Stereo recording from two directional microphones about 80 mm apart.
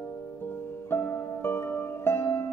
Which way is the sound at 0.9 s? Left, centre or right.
Left.